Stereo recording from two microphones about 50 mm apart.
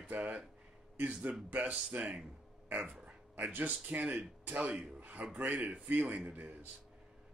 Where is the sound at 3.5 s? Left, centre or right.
Right.